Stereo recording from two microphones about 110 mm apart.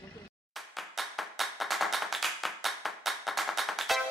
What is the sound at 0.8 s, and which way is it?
Clapping, centre (ahead or behind).